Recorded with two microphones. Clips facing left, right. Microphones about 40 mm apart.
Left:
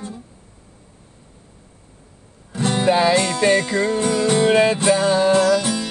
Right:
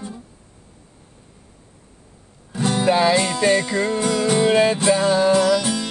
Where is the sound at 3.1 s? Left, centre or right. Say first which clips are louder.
Left 1 dB; centre.